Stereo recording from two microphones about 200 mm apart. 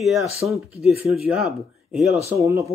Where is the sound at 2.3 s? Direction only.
15° right (ahead or behind).